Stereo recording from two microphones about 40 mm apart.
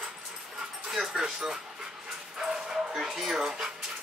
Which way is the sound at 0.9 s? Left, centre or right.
Centre.